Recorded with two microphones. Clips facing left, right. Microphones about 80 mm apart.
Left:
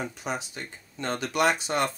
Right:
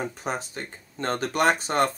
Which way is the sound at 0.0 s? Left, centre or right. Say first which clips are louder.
Right 2 dB; right.